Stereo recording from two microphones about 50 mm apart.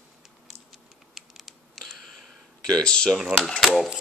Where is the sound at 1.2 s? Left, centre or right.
Centre.